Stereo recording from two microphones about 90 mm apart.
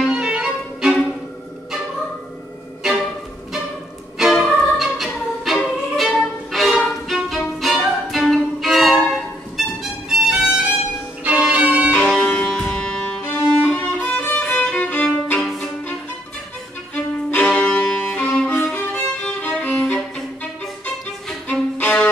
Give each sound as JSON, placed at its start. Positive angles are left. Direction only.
{"t": 0.0, "sound": "violin", "side_deg": -10}
{"t": 2.8, "sound": "music", "side_deg": 0}
{"t": 4.2, "sound": "music", "side_deg": 0}
{"t": 5.9, "sound": "violin", "side_deg": 0}
{"t": 9.6, "sound": "music", "side_deg": -5}
{"t": 10.0, "sound": "violin", "side_deg": -10}
{"t": 11.9, "sound": "music", "side_deg": 10}
{"t": 16.9, "sound": "violin", "side_deg": 15}
{"t": 21.5, "sound": "violin", "side_deg": 20}